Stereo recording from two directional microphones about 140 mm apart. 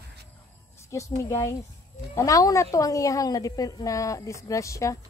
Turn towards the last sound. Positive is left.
turn(degrees=20)  # may be behind; listen again after turning